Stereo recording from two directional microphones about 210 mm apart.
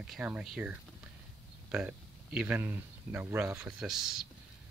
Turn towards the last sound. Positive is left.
turn(degrees=0)  # may be behind; listen again after turning